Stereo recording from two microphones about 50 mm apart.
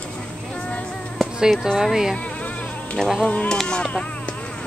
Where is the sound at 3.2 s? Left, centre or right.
Left.